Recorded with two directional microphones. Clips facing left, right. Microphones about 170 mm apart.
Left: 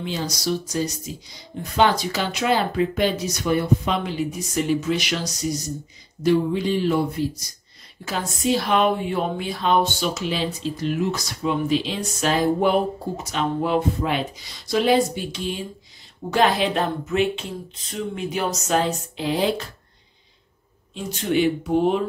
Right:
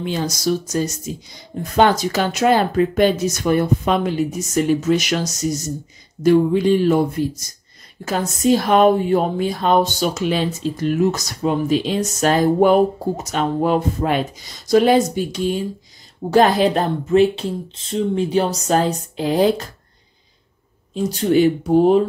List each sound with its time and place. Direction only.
0.0 s a woman's voice: 50° right (ahead or behind)
20.9 s speech: 40° right (ahead or behind)